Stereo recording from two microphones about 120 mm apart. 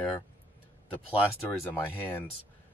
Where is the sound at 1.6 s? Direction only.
15° left (ahead or behind).